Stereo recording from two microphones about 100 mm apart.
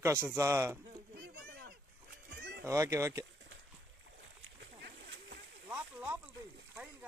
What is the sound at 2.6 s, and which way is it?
Speech, 30° right (ahead or behind).